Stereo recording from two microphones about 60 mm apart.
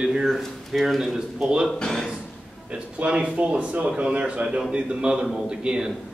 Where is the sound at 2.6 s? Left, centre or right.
Right.